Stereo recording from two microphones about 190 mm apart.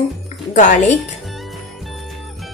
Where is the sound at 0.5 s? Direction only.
40° left (ahead or behind).